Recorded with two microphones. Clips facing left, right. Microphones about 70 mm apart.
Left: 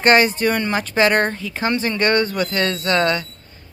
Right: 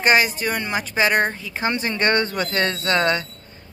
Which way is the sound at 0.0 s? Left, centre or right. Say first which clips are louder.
Left 4 dB; centre.